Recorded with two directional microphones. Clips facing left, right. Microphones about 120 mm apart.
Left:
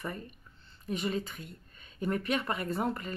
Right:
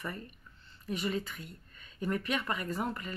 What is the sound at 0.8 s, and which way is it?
Speech, 25° left (ahead or behind).